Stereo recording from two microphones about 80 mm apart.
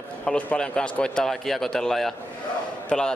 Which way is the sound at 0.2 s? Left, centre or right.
Centre.